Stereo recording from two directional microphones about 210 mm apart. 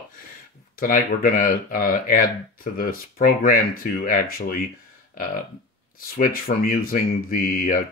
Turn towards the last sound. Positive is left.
turn(degrees=40)  # may be behind; listen again after turning